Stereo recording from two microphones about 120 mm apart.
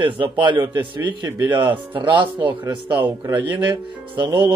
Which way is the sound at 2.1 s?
40° right (ahead or behind).